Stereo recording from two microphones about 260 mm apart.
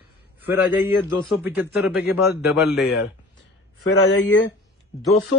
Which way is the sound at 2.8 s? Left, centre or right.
Left.